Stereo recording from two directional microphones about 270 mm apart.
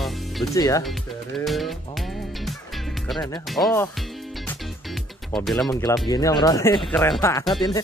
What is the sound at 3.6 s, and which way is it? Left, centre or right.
Speech, centre.